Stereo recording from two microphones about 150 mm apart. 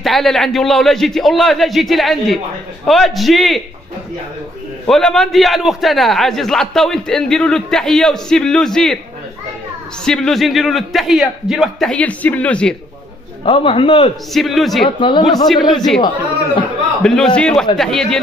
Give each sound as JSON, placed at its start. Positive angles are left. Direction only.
{"t": 0.0, "sound": "a man's voice", "side_deg": 0}
{"t": 4.8, "sound": "a man's voice", "side_deg": 5}
{"t": 10.0, "sound": "a man's voice", "side_deg": 5}
{"t": 13.5, "sound": "a man's voice", "side_deg": 35}
{"t": 14.3, "sound": "a man's voice", "side_deg": 0}
{"t": 15.0, "sound": "a man's voice", "side_deg": 30}
{"t": 15.4, "sound": "a man's voice", "side_deg": 0}
{"t": 17.0, "sound": "a man's voice", "side_deg": 5}